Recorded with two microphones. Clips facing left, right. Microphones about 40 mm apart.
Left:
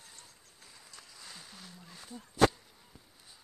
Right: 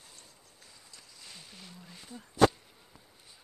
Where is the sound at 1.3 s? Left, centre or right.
Centre.